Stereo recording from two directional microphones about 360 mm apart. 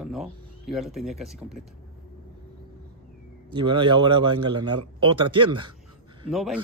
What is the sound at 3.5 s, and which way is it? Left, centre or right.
Speech, centre.